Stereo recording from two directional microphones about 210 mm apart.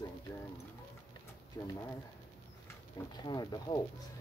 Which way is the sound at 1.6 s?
15° left (ahead or behind).